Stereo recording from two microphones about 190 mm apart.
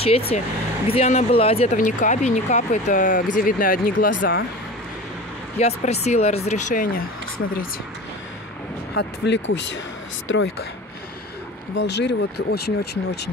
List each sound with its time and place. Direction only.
0.0 s speech: 30° left (ahead or behind); by 4.1 s 50° left (ahead or behind)
4.1 s speech: 80° left
5.6 s speech: 35° left (ahead or behind)
8.9 s speech: 65° left (ahead or behind)
10.2 s speech: 90° left
11.8 s speech: 60° left (ahead or behind)